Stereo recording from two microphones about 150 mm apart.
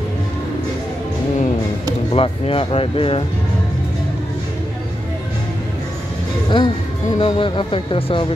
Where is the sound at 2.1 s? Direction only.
35° left (ahead or behind).